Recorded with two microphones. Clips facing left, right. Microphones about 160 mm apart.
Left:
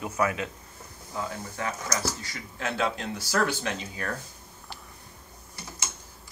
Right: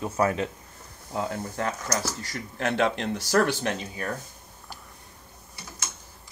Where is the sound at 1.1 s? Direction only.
55° right (ahead or behind).